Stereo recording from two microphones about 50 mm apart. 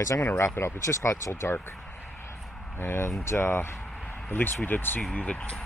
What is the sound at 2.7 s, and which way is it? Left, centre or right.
Speech, left.